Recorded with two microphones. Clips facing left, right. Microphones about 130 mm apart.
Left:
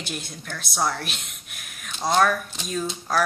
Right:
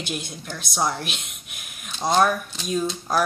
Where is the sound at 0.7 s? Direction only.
20° right (ahead or behind).